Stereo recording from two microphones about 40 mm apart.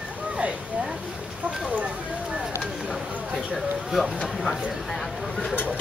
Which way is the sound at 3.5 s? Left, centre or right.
Centre.